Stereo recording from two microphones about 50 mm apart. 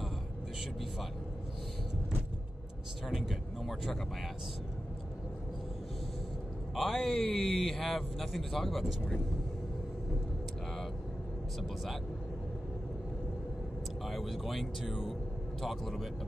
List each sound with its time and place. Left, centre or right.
3.1 s speech: centre
6.7 s speech: centre
14.0 s speech: centre